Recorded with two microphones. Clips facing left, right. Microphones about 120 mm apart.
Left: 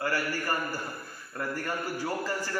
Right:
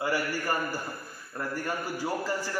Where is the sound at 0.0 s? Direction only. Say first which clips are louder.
Right 1 dB; 15° right (ahead or behind).